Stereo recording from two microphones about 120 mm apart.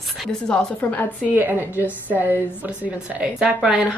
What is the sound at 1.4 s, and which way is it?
Speech, 15° right (ahead or behind).